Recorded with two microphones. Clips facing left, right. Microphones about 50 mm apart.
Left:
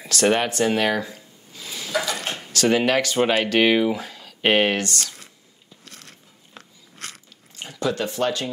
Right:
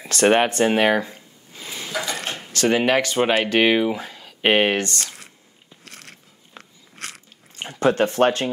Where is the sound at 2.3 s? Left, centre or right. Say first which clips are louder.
Even; centre.